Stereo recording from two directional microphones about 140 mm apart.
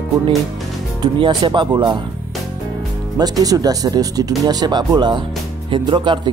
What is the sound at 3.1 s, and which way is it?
Speech, 25° right (ahead or behind).